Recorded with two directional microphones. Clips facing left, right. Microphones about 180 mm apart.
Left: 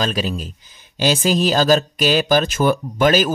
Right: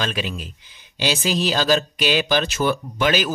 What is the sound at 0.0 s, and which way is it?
Speech, 40° left (ahead or behind).